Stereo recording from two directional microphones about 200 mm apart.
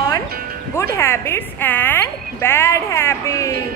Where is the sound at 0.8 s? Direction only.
10° left (ahead or behind).